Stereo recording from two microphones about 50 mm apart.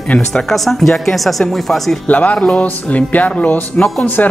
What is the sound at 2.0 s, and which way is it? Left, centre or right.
Speech, left.